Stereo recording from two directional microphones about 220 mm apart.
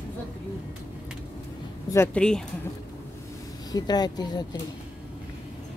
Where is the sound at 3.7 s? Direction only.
20° left (ahead or behind).